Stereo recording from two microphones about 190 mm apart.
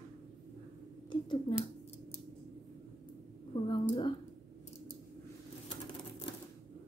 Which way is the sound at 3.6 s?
25° left (ahead or behind).